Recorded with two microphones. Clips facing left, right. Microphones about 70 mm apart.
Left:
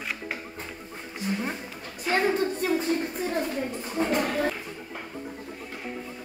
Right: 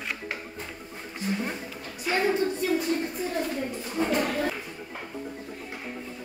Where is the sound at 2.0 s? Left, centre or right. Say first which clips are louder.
Left 1 dB; left.